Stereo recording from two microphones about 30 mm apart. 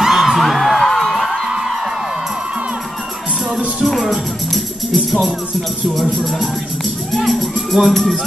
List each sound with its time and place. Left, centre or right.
0.0 s music: centre
0.5 s music: centre
0.7 s music: centre
4.9 s music: centre
7.2 s music: centre